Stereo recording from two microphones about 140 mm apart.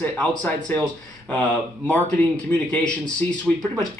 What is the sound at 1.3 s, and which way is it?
A man's voice, 10° left (ahead or behind).